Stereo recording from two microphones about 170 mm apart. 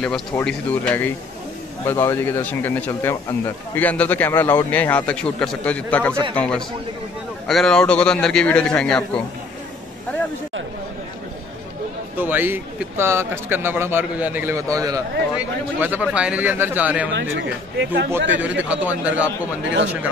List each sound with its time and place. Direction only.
0.0 s a man's voice: 5° left (ahead or behind)
12.2 s speech: 10° right (ahead or behind)
15.3 s speech: 10° right (ahead or behind)
17.1 s speech: 90° right
18.6 s speech: 10° right (ahead or behind)
19.6 s speech: 90° right